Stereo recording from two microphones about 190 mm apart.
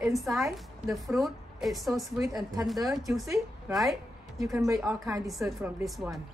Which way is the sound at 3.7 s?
Centre (ahead or behind).